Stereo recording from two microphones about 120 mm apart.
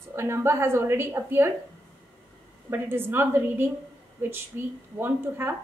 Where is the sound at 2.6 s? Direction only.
20° right (ahead or behind).